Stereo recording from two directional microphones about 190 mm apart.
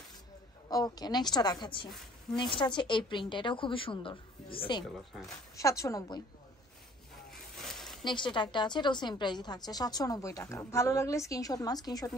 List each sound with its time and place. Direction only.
0.7 s a woman's voice: 20° left (ahead or behind)
4.9 s speech: centre (ahead or behind)
5.6 s a woman's voice: 15° left (ahead or behind)
7.2 s a sound: centre (ahead or behind)
8.0 s a woman's voice: 25° left (ahead or behind)